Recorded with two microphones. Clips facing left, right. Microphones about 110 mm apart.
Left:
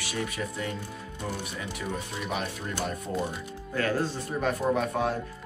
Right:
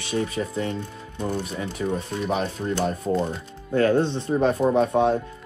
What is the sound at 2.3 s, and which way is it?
Speech, 35° right (ahead or behind).